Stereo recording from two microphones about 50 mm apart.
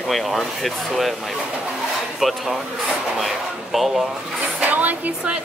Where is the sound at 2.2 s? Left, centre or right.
Centre.